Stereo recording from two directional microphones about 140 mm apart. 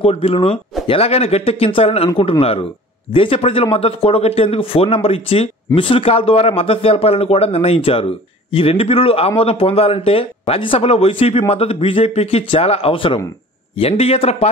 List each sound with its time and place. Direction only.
0.0 s a man's voice: 45° left (ahead or behind)